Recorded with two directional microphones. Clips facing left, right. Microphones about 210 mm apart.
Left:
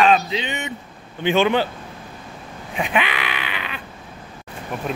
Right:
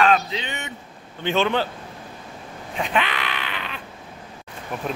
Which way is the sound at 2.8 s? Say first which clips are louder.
Left 2 dB; 10° left (ahead or behind).